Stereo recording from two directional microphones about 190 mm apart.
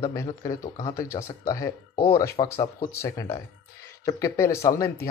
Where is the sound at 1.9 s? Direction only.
25° left (ahead or behind).